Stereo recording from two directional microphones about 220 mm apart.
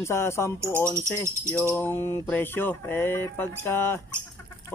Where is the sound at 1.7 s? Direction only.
10° left (ahead or behind).